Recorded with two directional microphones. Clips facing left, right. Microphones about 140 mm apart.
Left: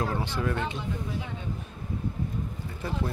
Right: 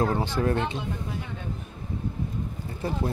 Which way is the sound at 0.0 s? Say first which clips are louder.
Right 5 dB; 35° right (ahead or behind).